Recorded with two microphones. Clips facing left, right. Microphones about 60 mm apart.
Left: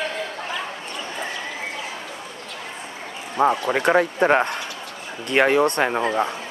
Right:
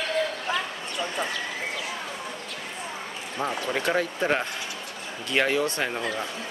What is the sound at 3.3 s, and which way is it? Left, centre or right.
Speech, left.